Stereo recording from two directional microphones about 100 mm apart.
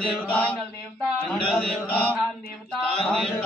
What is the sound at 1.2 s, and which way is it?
Speech, 5° left (ahead or behind).